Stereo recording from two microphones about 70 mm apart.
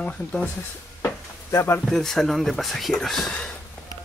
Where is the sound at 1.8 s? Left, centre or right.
Centre.